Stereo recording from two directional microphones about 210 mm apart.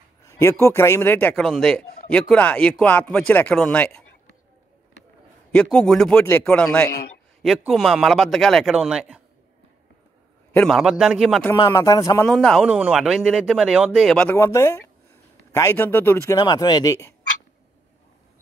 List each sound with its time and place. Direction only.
0.2 s a man's voice: 15° left (ahead or behind)
5.5 s a man's voice: 5° left (ahead or behind)
10.5 s a man's voice: 5° left (ahead or behind)
11.5 s speech: 15° left (ahead or behind)
12.3 s a man's voice: 5° left (ahead or behind)